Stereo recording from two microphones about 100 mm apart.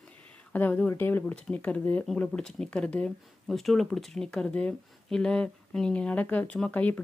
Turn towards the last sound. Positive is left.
turn(degrees=15)  # may be behind; listen again after turning